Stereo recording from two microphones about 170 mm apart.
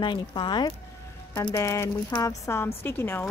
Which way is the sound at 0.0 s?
25° left (ahead or behind).